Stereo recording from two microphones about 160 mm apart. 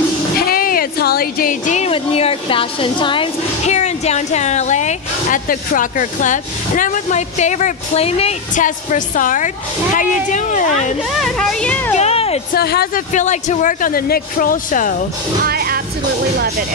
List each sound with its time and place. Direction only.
0.4 s a sound: 65° left (ahead or behind); by 3.3 s 30° left (ahead or behind)
3.6 s speech: 45° left (ahead or behind)
8.5 s speech: 55° left (ahead or behind)
11.1 s speech: centre (ahead or behind)
12.0 s speech: 40° left (ahead or behind)
12.5 s speech: 75° left (ahead or behind)
13.1 s speech: 50° left (ahead or behind)
15.4 s speech: 70° right (ahead or behind)